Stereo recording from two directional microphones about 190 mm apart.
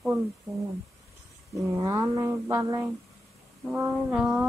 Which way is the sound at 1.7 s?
15° right (ahead or behind).